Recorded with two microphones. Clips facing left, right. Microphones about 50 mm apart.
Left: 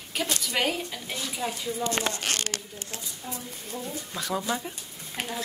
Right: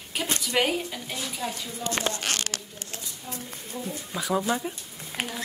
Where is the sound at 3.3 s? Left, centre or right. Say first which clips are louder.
Left 1 dB; centre.